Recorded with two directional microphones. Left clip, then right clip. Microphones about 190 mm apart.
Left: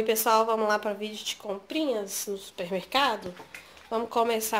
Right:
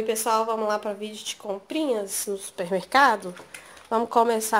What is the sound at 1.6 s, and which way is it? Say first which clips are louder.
A woman's voice: right 3 dB; 30° right (ahead or behind).